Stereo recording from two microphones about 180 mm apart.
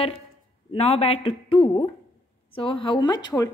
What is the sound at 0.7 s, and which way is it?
A woman's voice, 35° left (ahead or behind).